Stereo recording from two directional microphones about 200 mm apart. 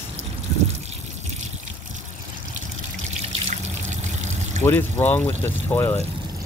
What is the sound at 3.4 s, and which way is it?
Water, 35° right (ahead or behind).